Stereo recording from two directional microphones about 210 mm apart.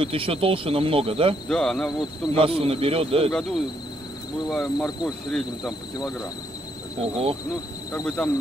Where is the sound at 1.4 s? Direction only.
5° left (ahead or behind).